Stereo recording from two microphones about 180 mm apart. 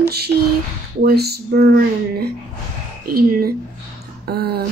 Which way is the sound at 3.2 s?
55° right (ahead or behind).